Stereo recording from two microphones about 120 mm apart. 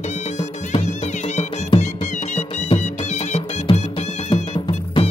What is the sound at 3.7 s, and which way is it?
Music, 40° left (ahead or behind).